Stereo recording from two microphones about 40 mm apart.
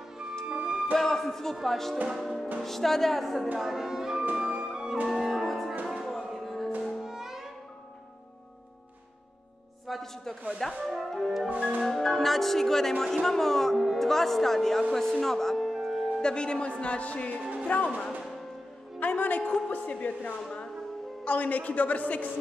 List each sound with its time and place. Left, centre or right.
0.6 s music: right
0.9 s speech: centre
3.5 s music: centre
4.3 s music: right
5.0 s music: centre
9.9 s a sound: centre
10.8 s speech: centre
11.5 s music: right
11.8 s speech: centre
16.2 s a man's voice: left
18.9 s a woman's voice: left